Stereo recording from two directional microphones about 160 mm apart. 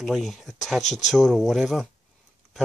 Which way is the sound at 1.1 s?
Centre (ahead or behind).